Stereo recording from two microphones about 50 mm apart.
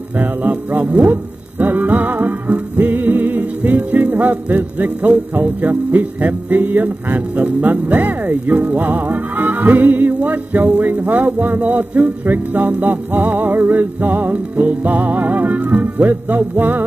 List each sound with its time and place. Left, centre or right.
0.2 s music: right